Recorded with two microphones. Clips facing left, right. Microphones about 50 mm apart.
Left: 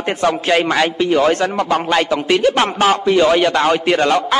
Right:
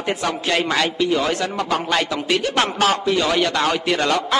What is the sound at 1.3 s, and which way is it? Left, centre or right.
Speech, left.